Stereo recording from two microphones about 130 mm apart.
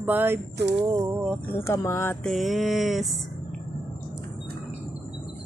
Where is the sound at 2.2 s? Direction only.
Centre (ahead or behind).